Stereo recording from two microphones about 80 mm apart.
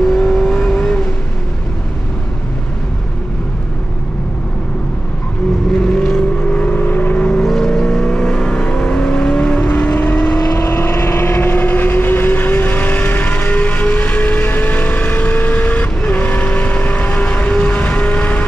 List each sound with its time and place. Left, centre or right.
0.1 s vehicle: centre
5.8 s vehicle: centre
6.6 s vehicle: left
10.4 s vehicle: left